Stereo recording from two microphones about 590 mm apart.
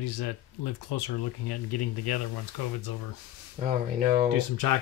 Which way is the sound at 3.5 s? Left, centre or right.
Centre.